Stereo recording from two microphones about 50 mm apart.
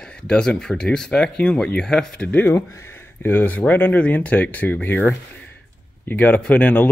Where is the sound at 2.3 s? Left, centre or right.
Left.